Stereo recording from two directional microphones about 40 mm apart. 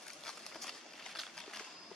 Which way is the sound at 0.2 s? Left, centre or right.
Centre.